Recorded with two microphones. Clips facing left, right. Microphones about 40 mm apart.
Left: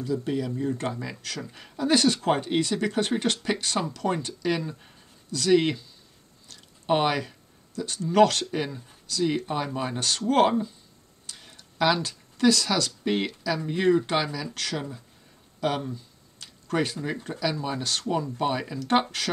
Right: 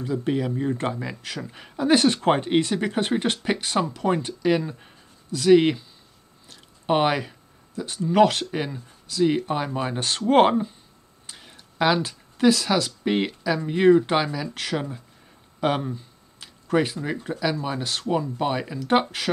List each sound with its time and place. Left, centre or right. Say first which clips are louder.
0.0 s speech: right 3 dB; right
11.2 s speech: right 1 dB; centre
15.6 s a sound: right 4 dB; right
16.6 s speech: right 4 dB; centre